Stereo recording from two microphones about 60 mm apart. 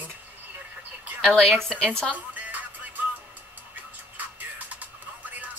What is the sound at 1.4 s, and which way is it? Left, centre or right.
Speech, centre.